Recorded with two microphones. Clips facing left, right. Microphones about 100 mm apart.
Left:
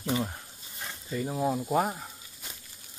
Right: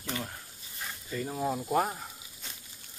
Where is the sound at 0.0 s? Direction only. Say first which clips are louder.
Left 7 dB; 15° left (ahead or behind).